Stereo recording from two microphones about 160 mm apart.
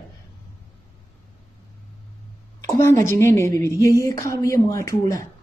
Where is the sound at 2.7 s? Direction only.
15° left (ahead or behind).